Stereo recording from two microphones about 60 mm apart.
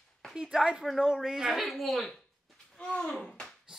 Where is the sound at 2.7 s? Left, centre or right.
Centre.